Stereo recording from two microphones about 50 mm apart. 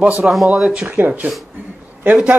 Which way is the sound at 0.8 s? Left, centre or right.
Right.